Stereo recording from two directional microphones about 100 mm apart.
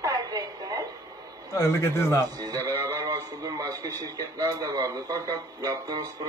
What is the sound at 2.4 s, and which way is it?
A man's voice, 35° right (ahead or behind).